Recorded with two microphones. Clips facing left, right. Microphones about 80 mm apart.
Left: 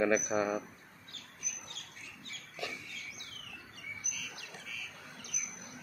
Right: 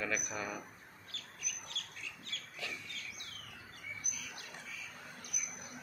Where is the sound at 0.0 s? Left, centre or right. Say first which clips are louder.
Left 9 dB; left.